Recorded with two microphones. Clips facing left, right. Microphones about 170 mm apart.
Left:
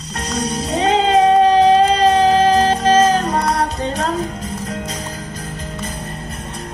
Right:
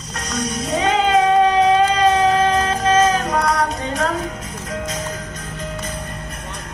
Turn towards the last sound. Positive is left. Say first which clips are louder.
# left 1 dB
turn(degrees=35)  # may be behind; listen again after turning